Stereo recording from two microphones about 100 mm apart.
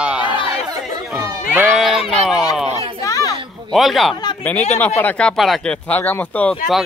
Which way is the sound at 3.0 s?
35° left (ahead or behind).